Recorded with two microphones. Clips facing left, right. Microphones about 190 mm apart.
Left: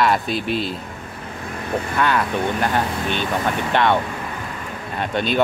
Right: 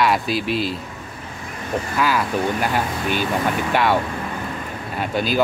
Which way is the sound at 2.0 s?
5° right (ahead or behind).